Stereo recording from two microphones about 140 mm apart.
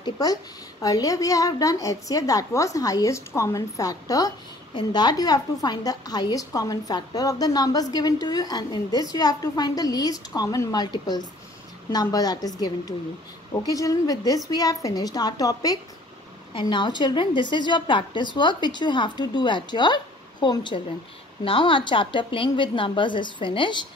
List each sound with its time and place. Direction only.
0.0 s a woman's voice: 25° left (ahead or behind)